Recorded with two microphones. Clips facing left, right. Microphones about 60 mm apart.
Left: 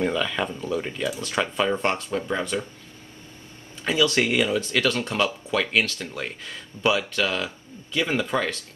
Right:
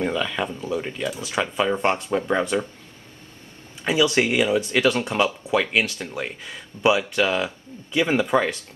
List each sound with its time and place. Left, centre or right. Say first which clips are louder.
0.0 s speech: even; centre
3.8 s speech: right 2 dB; centre